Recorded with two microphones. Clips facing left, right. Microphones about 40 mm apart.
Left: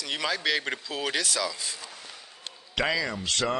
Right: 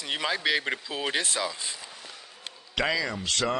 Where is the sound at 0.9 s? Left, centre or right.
Right.